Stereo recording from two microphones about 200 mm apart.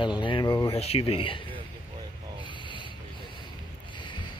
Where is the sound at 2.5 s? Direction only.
25° left (ahead or behind).